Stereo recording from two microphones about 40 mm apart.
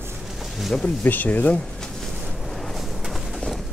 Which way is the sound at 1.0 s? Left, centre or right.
Left.